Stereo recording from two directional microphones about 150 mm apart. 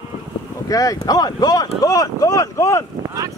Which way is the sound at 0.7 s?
25° left (ahead or behind).